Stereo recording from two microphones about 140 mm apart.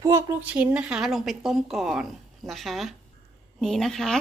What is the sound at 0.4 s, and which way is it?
Speech, 10° right (ahead or behind).